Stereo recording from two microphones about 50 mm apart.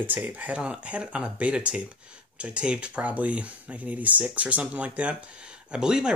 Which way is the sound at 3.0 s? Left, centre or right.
Right.